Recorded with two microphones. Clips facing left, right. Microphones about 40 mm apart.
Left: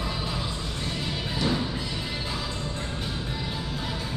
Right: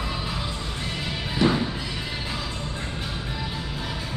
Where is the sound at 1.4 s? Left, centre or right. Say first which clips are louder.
Right 6 dB; right.